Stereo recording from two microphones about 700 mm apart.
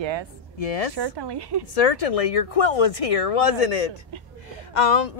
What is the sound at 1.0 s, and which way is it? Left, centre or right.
Speech, right.